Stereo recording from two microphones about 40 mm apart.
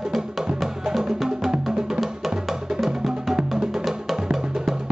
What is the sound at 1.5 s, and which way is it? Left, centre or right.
Music, centre.